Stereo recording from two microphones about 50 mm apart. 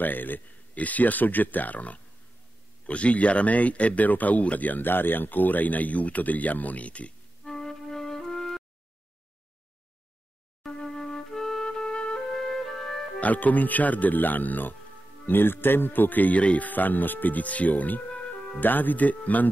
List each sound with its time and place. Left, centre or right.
0.0 s speech: left
7.4 s music: centre
10.6 s music: centre
12.4 s music: centre
13.2 s speech: left